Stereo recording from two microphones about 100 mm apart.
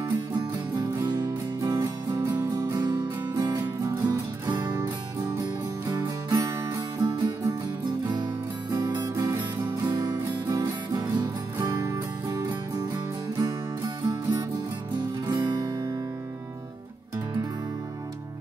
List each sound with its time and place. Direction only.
0.3 s music: 40° right (ahead or behind)
3.5 s music: 30° right (ahead or behind)
4.5 s music: 45° right (ahead or behind)
8.7 s music: 35° right (ahead or behind)
9.8 s music: 45° right (ahead or behind)